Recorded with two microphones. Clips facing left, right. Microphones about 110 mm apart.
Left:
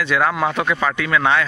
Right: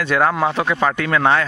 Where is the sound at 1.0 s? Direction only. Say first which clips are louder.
Even; 40° right (ahead or behind).